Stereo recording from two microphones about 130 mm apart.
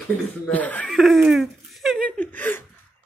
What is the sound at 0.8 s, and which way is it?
Speech, centre (ahead or behind).